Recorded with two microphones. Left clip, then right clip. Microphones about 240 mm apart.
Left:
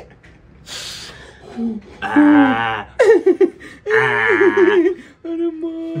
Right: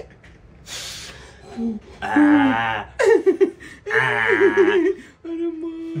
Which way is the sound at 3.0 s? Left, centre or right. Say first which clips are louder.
Left 4 dB; centre.